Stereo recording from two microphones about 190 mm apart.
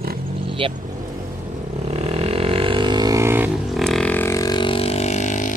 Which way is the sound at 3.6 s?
Centre (ahead or behind).